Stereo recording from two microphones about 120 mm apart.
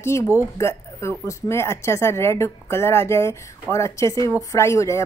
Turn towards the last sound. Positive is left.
turn(degrees=25)  # may be behind; listen again after turning